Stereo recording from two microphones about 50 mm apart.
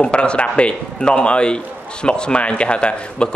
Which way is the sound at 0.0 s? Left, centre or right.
Left.